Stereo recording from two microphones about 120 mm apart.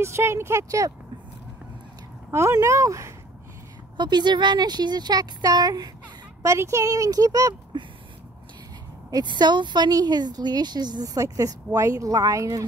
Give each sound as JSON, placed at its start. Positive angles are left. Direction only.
{"t": 0.0, "sound": "speech", "side_deg": -20}
{"t": 2.3, "sound": "speech", "side_deg": -25}
{"t": 3.9, "sound": "a woman's voice", "side_deg": -40}
{"t": 9.1, "sound": "a woman's voice", "side_deg": -35}